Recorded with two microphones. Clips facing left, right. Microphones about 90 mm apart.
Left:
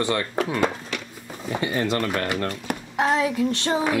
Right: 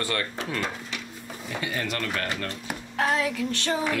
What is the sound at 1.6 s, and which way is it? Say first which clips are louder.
Speech: left 7 dB; 30° left (ahead or behind).